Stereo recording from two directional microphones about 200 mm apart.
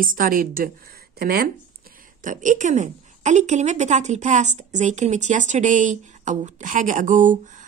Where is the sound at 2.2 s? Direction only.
40° right (ahead or behind).